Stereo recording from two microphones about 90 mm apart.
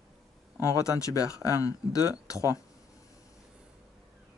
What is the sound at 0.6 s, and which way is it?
Speech, 40° left (ahead or behind).